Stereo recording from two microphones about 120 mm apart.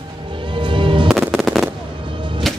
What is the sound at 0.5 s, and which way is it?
Music, 45° right (ahead or behind).